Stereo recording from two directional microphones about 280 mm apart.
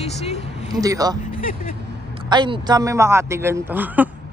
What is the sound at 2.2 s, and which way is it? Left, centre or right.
Speech, centre.